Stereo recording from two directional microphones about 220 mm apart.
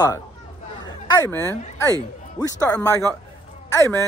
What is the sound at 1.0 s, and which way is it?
Speech, 15° left (ahead or behind).